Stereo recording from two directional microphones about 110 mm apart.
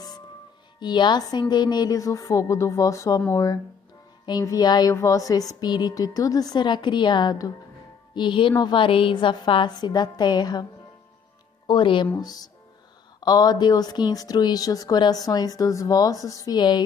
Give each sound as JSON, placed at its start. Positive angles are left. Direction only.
{"t": 0.7, "sound": "a woman's voice", "side_deg": 40}
{"t": 12.2, "sound": "a woman's voice", "side_deg": 35}